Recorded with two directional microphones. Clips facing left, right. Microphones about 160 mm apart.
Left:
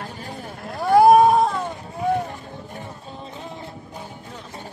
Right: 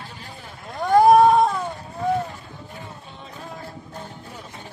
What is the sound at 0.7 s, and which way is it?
Cat, 10° left (ahead or behind).